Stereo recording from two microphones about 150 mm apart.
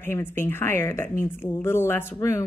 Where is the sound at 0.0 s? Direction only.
15° left (ahead or behind).